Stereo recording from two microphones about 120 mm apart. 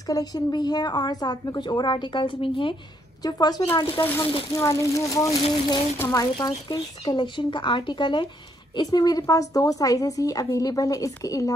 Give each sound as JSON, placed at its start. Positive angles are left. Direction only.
{"t": 0.1, "sound": "a woman's voice", "side_deg": 30}
{"t": 3.2, "sound": "a woman's voice", "side_deg": 35}
{"t": 4.0, "sound": "a woman's voice", "side_deg": 15}